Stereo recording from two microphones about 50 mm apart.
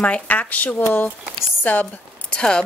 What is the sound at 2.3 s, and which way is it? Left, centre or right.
Speech, centre.